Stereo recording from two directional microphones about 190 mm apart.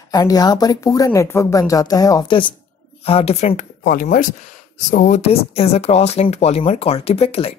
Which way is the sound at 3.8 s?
50° left (ahead or behind).